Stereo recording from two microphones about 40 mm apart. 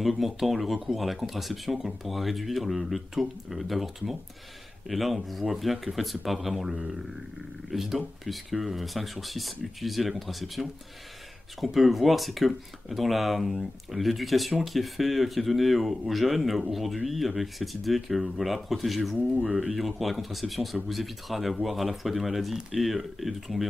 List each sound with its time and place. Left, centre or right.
0.0 s speech: centre
19.1 s speech: right
19.7 s speech: centre